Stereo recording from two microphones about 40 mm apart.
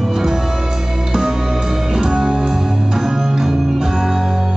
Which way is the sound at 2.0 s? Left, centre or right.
Centre.